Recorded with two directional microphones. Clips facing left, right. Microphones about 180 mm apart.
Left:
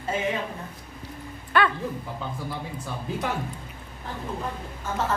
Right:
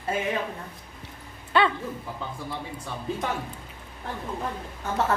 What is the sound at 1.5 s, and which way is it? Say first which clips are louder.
Speech: right 1 dB; 25° right (ahead or behind).